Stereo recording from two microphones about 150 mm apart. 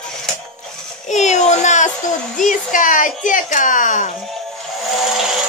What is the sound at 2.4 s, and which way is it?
Speech, 60° left (ahead or behind).